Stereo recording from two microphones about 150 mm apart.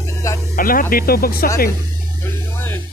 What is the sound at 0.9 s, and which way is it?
Speech, 85° left.